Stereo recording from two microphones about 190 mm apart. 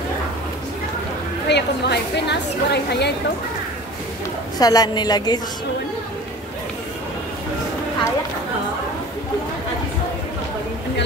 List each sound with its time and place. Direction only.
1.5 s a woman's voice: 65° left (ahead or behind)
4.6 s a woman's voice: 20° left (ahead or behind)